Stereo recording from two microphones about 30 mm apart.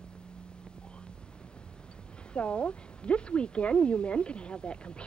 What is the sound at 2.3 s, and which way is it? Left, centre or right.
A woman's voice, left.